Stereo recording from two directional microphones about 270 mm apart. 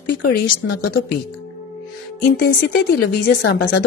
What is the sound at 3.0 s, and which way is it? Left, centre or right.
Speech, left.